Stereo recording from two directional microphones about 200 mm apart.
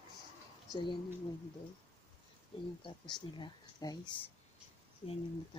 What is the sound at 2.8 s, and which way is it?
Speech, 20° left (ahead or behind).